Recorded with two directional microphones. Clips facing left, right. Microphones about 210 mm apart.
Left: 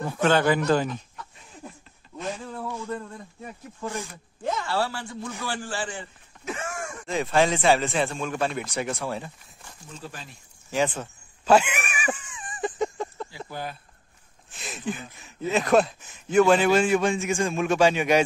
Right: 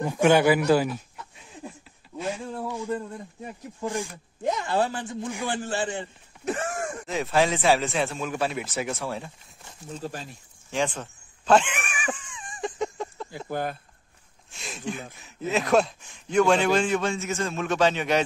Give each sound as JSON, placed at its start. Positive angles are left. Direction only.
{"t": 0.0, "sound": "speech", "side_deg": -15}
{"t": 2.1, "sound": "a sound", "side_deg": -10}
{"t": 3.8, "sound": "a man's voice", "side_deg": -15}
{"t": 6.4, "sound": "a sound", "side_deg": -35}
{"t": 7.1, "sound": "speech", "side_deg": 0}
{"t": 9.9, "sound": "speech", "side_deg": -40}
{"t": 10.7, "sound": "a sound", "side_deg": 5}
{"t": 13.5, "sound": "speech", "side_deg": -50}
{"t": 14.5, "sound": "speech", "side_deg": 0}